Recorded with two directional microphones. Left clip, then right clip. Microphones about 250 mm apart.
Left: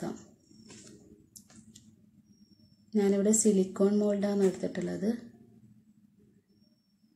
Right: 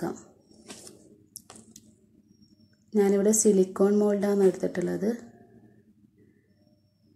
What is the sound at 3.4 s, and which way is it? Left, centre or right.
Speech, centre.